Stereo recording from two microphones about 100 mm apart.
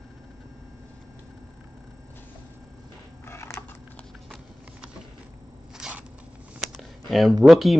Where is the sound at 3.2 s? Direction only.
25° left (ahead or behind).